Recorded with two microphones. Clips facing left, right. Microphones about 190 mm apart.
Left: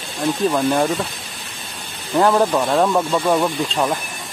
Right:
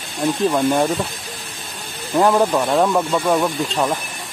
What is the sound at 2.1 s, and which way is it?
Speech, 5° right (ahead or behind).